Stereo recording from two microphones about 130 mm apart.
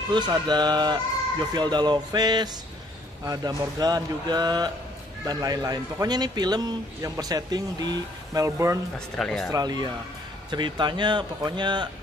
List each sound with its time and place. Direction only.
0.1 s speech: 35° right (ahead or behind)
8.9 s speech: 5° left (ahead or behind)
9.5 s speech: 30° right (ahead or behind)